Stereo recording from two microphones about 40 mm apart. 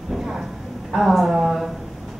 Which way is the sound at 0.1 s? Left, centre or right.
Centre.